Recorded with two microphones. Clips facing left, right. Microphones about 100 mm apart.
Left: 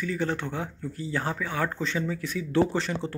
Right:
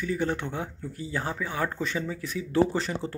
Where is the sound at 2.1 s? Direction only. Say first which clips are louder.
Left 1 dB; 35° right (ahead or behind).